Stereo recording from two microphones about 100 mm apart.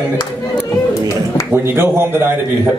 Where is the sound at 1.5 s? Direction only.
25° right (ahead or behind).